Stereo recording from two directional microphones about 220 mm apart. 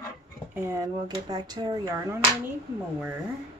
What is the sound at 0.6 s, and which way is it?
Speech, 15° right (ahead or behind).